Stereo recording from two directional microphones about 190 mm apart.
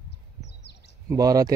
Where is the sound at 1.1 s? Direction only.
20° right (ahead or behind).